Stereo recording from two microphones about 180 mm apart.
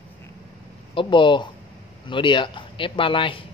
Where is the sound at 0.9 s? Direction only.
25° left (ahead or behind).